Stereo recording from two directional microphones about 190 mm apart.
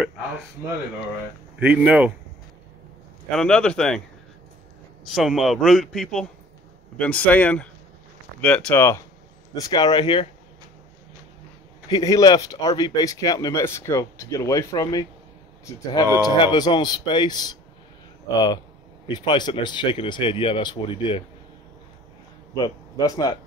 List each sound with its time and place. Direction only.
1.6 s a man's voice: 5° right (ahead or behind)
3.3 s a man's voice: 5° left (ahead or behind)
5.0 s a man's voice: centre (ahead or behind); by 10.2 s 25° left (ahead or behind)
11.9 s speech: 20° left (ahead or behind)
19.0 s speech: 25° left (ahead or behind)
22.5 s speech: 20° left (ahead or behind)